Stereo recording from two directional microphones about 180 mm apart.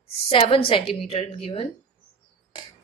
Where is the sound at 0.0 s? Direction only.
30° left (ahead or behind).